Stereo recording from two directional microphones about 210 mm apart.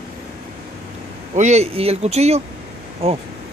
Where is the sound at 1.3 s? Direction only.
35° right (ahead or behind).